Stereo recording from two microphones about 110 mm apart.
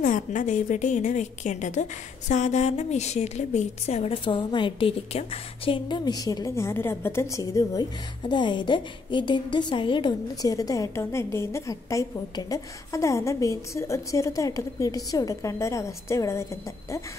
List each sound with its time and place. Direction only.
0.3 s a woman's voice: 90° left; by 4.2 s 70° left (ahead or behind)
4.2 s a woman's voice: 45° left (ahead or behind)
5.1 s a woman's voice: 60° left (ahead or behind)
5.9 s a woman's voice: 40° left (ahead or behind)
6.5 s a woman's voice: 25° left (ahead or behind)
8.3 s a woman's voice: 45° left (ahead or behind)
10.4 s a woman's voice: 30° left (ahead or behind)